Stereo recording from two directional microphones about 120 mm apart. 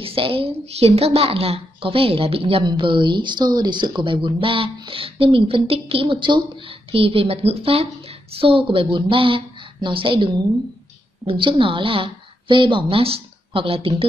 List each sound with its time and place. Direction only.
0.0 s speech: 50° right (ahead or behind)
2.6 s a woman's voice: 45° right (ahead or behind)